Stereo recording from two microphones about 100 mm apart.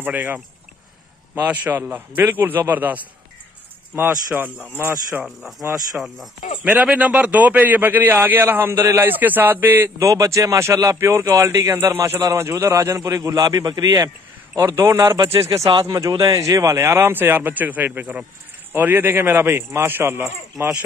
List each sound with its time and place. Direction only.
0.0 s a man's voice: 20° right (ahead or behind)
6.8 s a man's voice: 15° right (ahead or behind)
10.0 s a man's voice: 35° right (ahead or behind)